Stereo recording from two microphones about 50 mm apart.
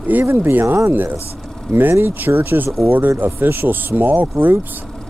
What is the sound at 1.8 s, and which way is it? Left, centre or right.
Speech, right.